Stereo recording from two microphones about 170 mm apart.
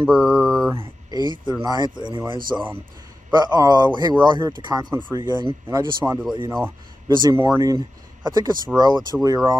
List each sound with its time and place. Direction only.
0.0 s mantra: centre (ahead or behind)
0.7 s speech: 25° right (ahead or behind)
2.5 s speech: 10° right (ahead or behind)
3.3 s speech: 25° right (ahead or behind)